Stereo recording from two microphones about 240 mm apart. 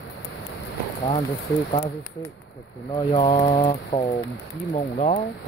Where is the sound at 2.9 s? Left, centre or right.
Centre.